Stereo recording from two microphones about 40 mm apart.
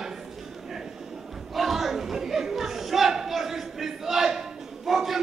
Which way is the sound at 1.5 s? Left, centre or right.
Centre.